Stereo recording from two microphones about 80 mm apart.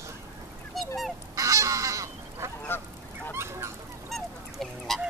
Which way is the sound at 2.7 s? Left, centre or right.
Left.